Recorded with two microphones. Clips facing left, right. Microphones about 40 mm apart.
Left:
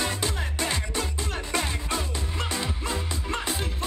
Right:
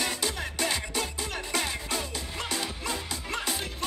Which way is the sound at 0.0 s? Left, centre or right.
Left.